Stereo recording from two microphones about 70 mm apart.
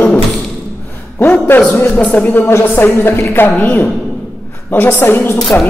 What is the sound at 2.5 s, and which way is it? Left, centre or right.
A woman's voice, left.